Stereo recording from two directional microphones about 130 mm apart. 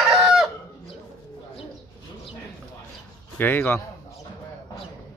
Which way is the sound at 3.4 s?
15° left (ahead or behind).